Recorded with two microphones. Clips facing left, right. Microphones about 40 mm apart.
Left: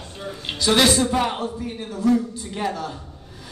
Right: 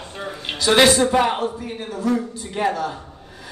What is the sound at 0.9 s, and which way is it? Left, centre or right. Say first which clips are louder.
A man's voice: right 4 dB; centre.